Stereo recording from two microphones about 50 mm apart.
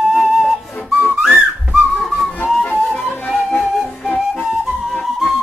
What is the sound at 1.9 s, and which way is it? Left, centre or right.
Whistling, centre.